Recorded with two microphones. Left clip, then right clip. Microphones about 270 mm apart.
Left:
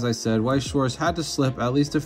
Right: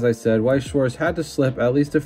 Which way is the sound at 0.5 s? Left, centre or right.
Centre.